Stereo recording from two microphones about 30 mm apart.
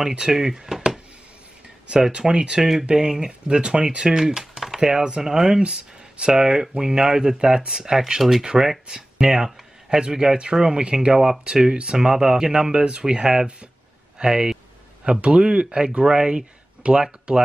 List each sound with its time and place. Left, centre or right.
0.3 s speech: centre
2.1 s speech: right
2.6 s speech: centre
3.1 s speech: right
4.2 s speech: centre
5.6 s speech: right
15.2 s speech: right